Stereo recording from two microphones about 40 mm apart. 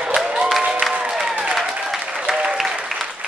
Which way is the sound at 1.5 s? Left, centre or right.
Centre.